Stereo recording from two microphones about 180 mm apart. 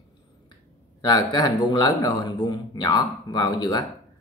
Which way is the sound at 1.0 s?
25° left (ahead or behind).